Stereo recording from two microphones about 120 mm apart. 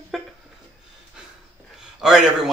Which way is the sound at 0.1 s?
Centre (ahead or behind).